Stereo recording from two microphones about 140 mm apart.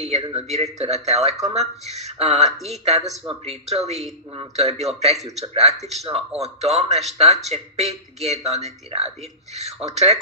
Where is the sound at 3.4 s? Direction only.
50° right (ahead or behind).